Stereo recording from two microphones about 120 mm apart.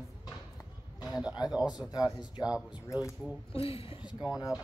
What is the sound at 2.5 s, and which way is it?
Speech, 5° right (ahead or behind).